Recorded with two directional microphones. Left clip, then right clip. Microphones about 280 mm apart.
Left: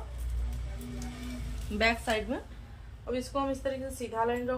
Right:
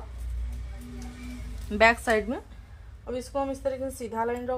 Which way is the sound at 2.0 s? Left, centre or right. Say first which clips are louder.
Right 5 dB; centre.